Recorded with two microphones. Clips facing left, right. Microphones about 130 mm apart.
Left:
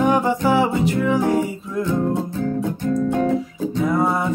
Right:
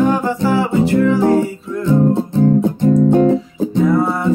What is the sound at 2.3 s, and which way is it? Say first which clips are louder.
Music: right 9 dB; 25° right (ahead or behind).